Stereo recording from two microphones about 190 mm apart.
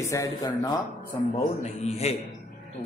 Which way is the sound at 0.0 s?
15° left (ahead or behind).